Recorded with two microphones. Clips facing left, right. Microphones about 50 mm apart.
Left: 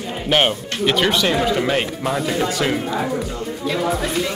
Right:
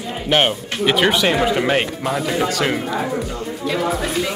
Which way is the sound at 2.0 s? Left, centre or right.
Centre.